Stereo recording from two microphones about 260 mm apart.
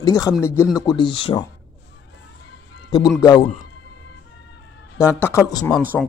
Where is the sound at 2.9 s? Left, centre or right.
Centre.